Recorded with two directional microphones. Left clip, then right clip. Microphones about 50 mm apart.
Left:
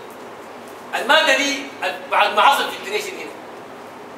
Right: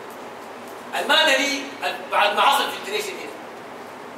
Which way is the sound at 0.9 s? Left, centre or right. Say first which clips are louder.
Left 3 dB; left.